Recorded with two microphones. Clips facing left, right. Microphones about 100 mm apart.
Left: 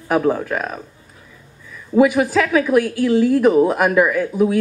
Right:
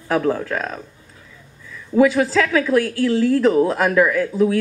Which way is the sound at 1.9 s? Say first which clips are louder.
Left 1 dB; 20° left (ahead or behind).